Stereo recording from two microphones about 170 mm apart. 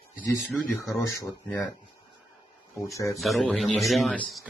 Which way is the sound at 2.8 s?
15° left (ahead or behind).